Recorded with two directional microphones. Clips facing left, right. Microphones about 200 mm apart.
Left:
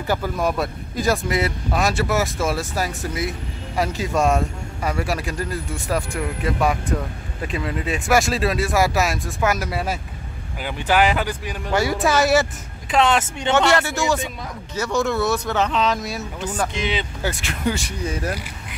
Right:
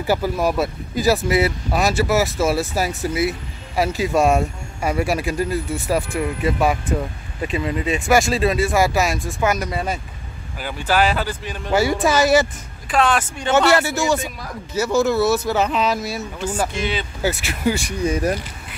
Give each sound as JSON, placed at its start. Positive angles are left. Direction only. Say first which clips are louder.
{"t": 0.0, "sound": "speech", "louder": "right 3 dB", "side_deg": -10}
{"t": 10.6, "sound": "speech", "louder": "even", "side_deg": 20}
{"t": 11.7, "sound": "speech", "louder": "right 2 dB", "side_deg": 0}
{"t": 12.9, "sound": "speech", "louder": "even", "side_deg": 20}
{"t": 13.5, "sound": "speech", "louder": "right 2 dB", "side_deg": -5}
{"t": 16.7, "sound": "speech", "louder": "right 1 dB", "side_deg": 20}
{"t": 17.2, "sound": "speech", "louder": "right 3 dB", "side_deg": -5}